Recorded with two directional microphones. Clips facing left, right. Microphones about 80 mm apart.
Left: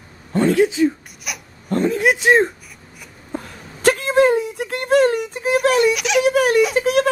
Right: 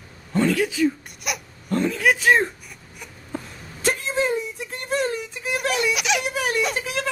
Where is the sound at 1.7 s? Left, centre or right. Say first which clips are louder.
Left 3 dB; left.